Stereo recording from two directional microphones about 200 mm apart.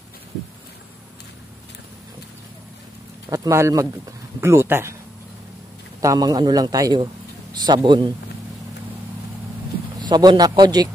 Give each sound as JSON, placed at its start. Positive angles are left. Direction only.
{"t": 3.3, "sound": "speech", "side_deg": -15}
{"t": 5.9, "sound": "a man's voice", "side_deg": -15}
{"t": 9.9, "sound": "a man's voice", "side_deg": -20}